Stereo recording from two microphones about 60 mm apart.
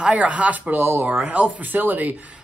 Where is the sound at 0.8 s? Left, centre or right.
Right.